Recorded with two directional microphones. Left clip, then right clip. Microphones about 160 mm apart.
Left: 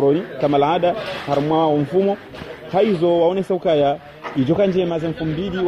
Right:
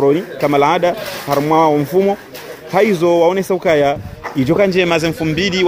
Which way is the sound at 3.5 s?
75° right (ahead or behind).